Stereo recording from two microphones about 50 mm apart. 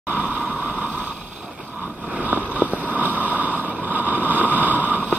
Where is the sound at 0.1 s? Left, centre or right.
Right.